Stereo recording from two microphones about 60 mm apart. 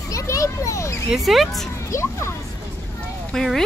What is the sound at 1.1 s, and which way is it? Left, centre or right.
Speech, centre.